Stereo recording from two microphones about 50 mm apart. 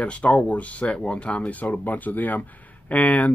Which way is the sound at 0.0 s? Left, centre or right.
Left.